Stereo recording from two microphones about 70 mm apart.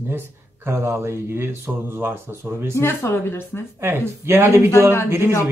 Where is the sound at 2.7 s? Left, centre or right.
Left.